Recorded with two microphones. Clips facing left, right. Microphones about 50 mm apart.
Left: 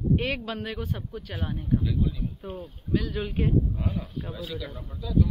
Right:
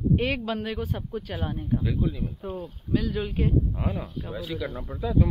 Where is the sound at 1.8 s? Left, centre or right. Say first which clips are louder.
Right 1 dB; centre.